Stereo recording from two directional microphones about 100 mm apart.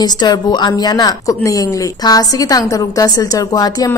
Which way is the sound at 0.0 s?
45° left (ahead or behind).